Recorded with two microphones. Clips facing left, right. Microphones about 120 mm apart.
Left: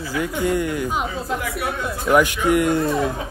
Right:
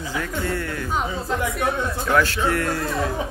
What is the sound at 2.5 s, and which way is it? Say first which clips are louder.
Speech: left 6 dB; 15° left (ahead or behind).